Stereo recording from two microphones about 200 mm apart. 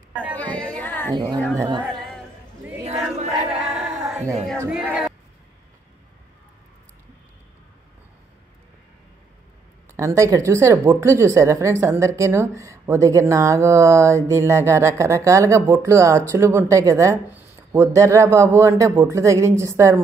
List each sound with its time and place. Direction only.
0.4 s music: 5° left (ahead or behind)
1.1 s a woman's voice: 20° right (ahead or behind)
3.5 s music: 5° right (ahead or behind)
4.6 s speech: 5° right (ahead or behind)
9.9 s a woman's voice: 15° right (ahead or behind)